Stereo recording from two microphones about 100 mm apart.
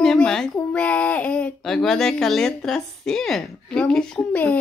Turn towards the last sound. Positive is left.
turn(degrees=15)  # may be behind; listen again after turning